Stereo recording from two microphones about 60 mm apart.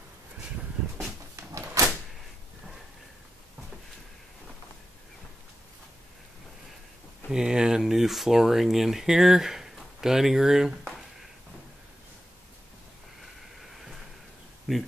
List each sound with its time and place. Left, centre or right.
1.3 s door: right
7.2 s speech: centre
14.7 s speech: centre